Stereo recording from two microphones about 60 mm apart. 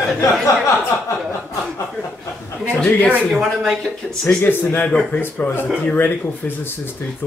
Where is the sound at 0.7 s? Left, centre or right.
Left.